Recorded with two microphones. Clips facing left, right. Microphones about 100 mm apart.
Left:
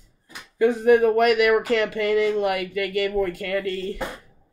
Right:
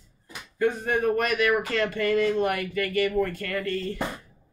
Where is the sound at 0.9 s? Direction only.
90° left.